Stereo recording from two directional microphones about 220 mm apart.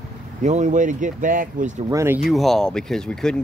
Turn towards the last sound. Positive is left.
turn(degrees=5)  # may be behind; listen again after turning